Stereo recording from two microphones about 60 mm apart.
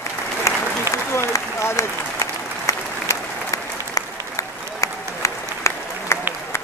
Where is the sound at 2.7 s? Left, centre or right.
Left.